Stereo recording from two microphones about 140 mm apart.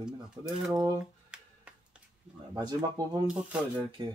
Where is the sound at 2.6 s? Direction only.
30° right (ahead or behind).